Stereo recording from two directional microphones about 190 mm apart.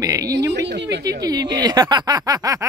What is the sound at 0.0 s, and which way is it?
Speech, 20° right (ahead or behind).